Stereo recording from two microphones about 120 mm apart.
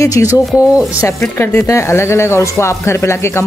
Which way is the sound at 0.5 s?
5° right (ahead or behind).